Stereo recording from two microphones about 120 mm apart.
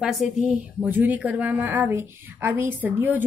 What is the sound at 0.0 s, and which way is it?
A woman's voice, centre (ahead or behind).